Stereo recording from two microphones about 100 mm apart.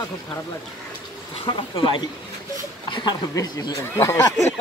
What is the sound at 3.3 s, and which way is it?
Speech, 40° left (ahead or behind).